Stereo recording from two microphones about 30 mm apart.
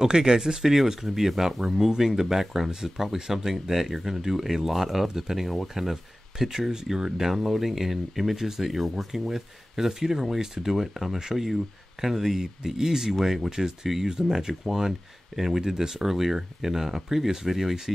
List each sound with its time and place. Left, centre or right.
0.0 s speech: right
10.7 s speech: centre
13.5 s speech: centre
14.2 s speech: centre